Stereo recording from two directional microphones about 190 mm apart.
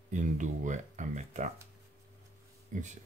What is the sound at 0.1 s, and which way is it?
Speech, 40° right (ahead or behind).